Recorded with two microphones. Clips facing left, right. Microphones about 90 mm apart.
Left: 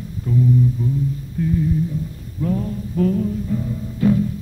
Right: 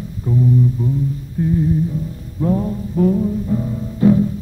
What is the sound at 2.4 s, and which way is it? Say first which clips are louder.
Music: right 4 dB; 25° right (ahead or behind).